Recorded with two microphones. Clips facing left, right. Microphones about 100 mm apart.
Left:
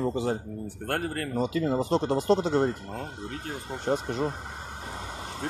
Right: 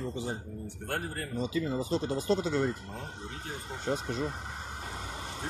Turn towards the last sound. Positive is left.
turn(degrees=45)  # may be behind; listen again after turning